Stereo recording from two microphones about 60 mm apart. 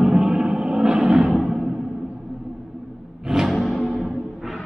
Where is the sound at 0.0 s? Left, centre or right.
Centre.